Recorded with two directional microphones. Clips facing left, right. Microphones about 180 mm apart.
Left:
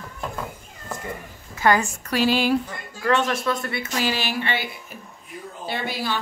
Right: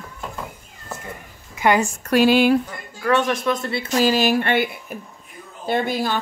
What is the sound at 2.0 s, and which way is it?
Speech, 55° right (ahead or behind).